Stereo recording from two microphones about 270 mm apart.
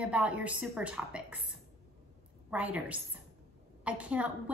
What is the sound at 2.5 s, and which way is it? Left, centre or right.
A woman's voice, centre.